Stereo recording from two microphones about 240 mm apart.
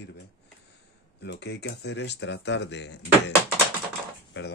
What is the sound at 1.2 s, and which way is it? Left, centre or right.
Speech, left.